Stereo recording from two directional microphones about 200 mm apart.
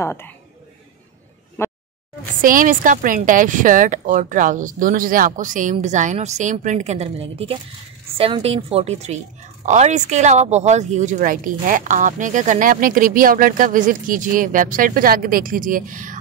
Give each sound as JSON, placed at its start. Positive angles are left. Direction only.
{"t": 0.0, "sound": "speech", "side_deg": 10}
{"t": 1.6, "sound": "a sound", "side_deg": 10}
{"t": 2.4, "sound": "a woman's voice", "side_deg": -40}